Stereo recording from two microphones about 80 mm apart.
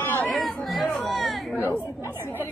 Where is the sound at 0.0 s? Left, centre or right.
Left.